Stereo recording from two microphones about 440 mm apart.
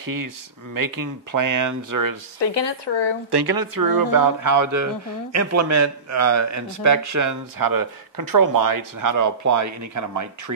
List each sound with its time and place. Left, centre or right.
0.0 s speech: right
2.4 s speech: left
3.3 s a man's voice: right